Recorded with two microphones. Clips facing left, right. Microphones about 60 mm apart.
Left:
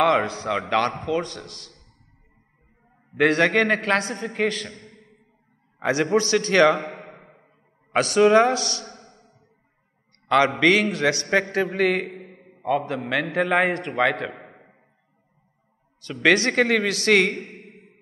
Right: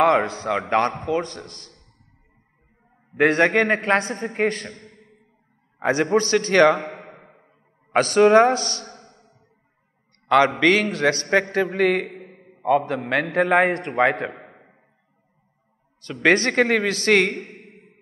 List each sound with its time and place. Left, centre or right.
0.0 s a man's voice: right
3.2 s a man's voice: right
7.2 s music: centre
7.9 s a man's voice: right
12.2 s a sound: centre
12.6 s a man's voice: right
14.4 s a sound: centre
16.0 s a man's voice: right